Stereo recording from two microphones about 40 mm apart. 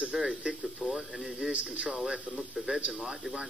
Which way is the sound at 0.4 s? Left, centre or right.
Right.